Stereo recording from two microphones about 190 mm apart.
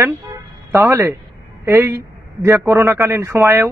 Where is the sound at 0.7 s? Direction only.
15° right (ahead or behind).